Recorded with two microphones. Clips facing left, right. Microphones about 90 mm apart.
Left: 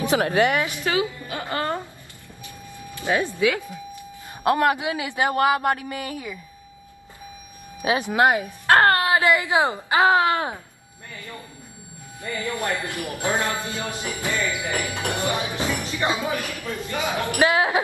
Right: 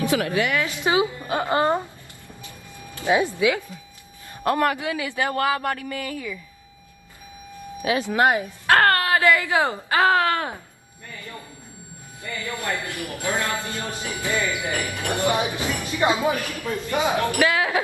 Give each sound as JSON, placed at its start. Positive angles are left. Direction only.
{"t": 0.0, "sound": "a man's voice", "side_deg": 25}
{"t": 0.7, "sound": "a woman's voice", "side_deg": -20}
{"t": 3.1, "sound": "speech", "side_deg": -15}
{"t": 4.4, "sound": "a man's voice", "side_deg": 20}
{"t": 7.8, "sound": "speech", "side_deg": 20}
{"t": 12.3, "sound": "a man's voice", "side_deg": 20}
{"t": 14.3, "sound": "a woman's voice", "side_deg": -20}
{"t": 14.9, "sound": "a man's voice", "side_deg": 20}
{"t": 15.2, "sound": "a woman's voice", "side_deg": -20}
{"t": 17.2, "sound": "a man's voice", "side_deg": 20}